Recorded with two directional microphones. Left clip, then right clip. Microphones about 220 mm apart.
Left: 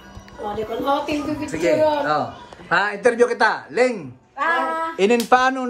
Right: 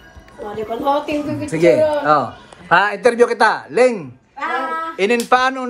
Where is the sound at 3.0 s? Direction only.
10° left (ahead or behind).